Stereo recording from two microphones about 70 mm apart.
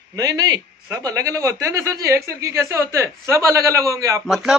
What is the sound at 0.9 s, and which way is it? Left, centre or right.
Speech, right.